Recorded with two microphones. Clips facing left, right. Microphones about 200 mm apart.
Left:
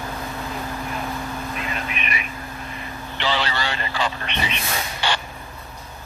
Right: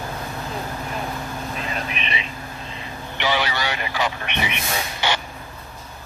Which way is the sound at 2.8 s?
15° right (ahead or behind).